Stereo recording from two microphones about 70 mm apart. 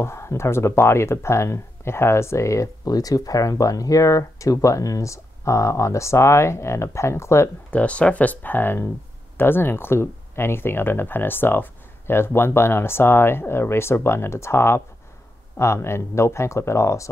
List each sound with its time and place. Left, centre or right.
0.0 s speech: left
2.9 s speech: left
7.7 s speech: centre; by 17.1 s left